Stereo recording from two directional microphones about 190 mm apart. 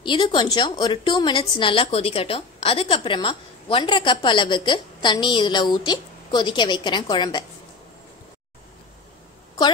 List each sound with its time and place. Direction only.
0.0 s a woman's voice: 25° left (ahead or behind)